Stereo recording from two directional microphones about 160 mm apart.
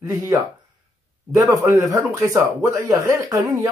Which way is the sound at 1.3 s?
20° right (ahead or behind).